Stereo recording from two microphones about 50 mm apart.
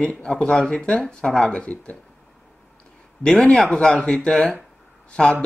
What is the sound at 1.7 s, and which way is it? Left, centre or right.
Speech, left.